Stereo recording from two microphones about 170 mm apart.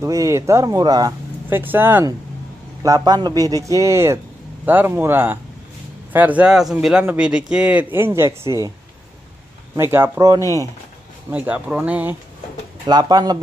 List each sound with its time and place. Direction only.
0.0 s a man's voice: 20° right (ahead or behind)
9.8 s a man's voice: 15° right (ahead or behind)
11.2 s speech: 10° right (ahead or behind)
12.8 s a man's voice: 25° right (ahead or behind)